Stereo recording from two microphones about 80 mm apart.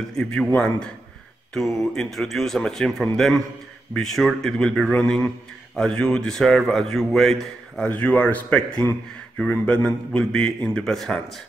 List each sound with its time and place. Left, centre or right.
0.1 s a man's voice: centre
7.9 s a man's voice: centre
9.8 s a man's voice: centre